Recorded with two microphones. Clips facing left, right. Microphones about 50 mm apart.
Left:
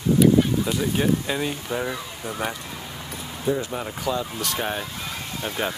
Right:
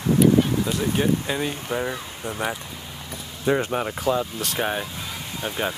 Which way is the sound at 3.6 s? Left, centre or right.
Right.